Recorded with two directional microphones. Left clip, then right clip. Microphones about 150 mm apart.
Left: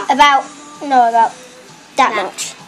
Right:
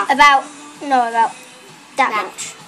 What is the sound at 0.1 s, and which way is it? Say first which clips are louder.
A woman's voice: left 1 dB; 15° left (ahead or behind).